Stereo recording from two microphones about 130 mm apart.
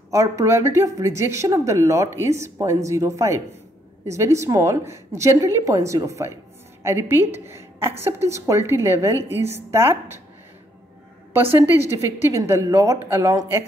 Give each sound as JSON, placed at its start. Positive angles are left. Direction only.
{"t": 0.1, "sound": "a woman's voice", "side_deg": -25}
{"t": 11.5, "sound": "a woman's voice", "side_deg": -15}